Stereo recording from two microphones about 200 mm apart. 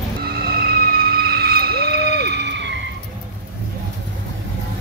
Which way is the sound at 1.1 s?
50° right (ahead or behind).